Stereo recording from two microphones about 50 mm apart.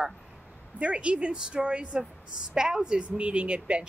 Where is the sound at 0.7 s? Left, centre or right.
Right.